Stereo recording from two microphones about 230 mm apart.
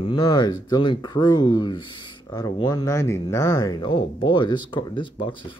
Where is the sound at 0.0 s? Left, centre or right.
Centre.